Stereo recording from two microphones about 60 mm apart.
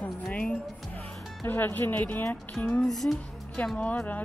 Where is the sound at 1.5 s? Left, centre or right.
Left.